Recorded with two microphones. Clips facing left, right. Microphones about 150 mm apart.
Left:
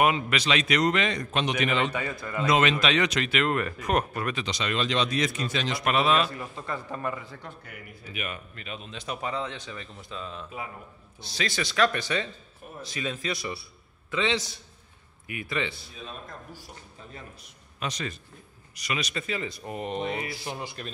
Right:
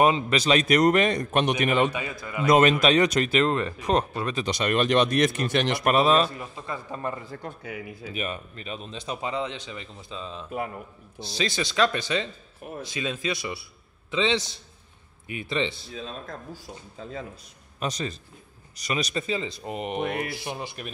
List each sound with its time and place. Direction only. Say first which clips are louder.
0.0 s speech: right 3 dB; 30° right (ahead or behind)
0.4 s a man's voice: right 7 dB; 45° right (ahead or behind)
1.8 s speech: right 4 dB; 15° right (ahead or behind)
2.4 s a man's voice: right 5 dB; 45° right (ahead or behind); by 4.4 s 25° right (ahead or behind)
4.5 s speech: right 9 dB; 55° right (ahead or behind)
5.9 s a man's voice: right 3 dB; 40° right (ahead or behind)
6.3 s speech: even; 15° right (ahead or behind)
7.2 s a man's voice: right 4 dB; 40° right (ahead or behind)
17.7 s a man's voice: right 3 dB; 40° right (ahead or behind)
19.2 s speech: right 3 dB; 25° right (ahead or behind)
20.0 s speech: right 3 dB; 60° right (ahead or behind)
20.4 s speech: right 2 dB; 20° right (ahead or behind)